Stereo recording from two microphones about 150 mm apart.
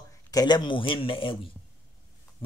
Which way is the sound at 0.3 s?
25° left (ahead or behind).